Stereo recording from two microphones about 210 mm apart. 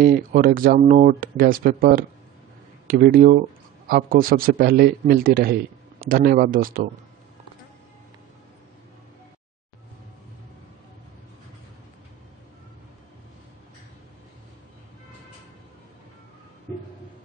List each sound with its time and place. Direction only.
0.0 s a man's voice: 45° right (ahead or behind)